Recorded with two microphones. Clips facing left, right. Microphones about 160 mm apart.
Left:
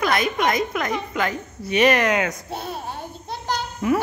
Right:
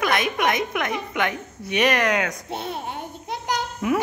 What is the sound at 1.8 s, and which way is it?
Speech, 5° left (ahead or behind).